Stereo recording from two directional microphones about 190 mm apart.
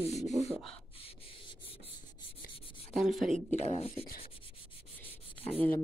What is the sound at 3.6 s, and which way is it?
Speech, 35° left (ahead or behind).